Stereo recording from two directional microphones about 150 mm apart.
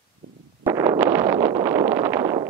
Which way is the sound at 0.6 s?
20° right (ahead or behind).